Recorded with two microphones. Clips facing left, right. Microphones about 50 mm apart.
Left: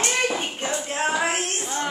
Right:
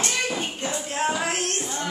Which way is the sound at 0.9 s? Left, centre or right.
Centre.